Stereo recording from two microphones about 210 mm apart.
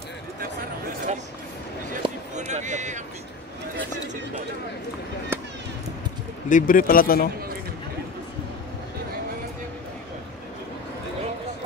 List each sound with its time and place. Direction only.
2.0 s a sound: 35° right (ahead or behind)
5.3 s chop: 10° right (ahead or behind)
6.5 s speech: 40° left (ahead or behind)